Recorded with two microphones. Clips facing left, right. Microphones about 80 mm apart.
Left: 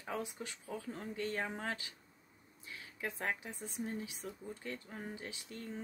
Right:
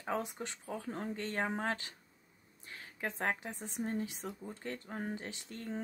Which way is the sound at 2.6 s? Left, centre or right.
Right.